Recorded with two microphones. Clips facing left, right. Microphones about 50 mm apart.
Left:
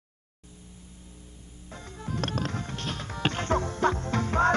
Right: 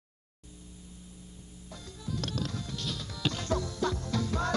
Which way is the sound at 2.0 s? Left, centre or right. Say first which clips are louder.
Left 4 dB; left.